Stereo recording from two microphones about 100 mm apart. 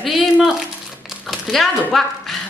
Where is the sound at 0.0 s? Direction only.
5° right (ahead or behind).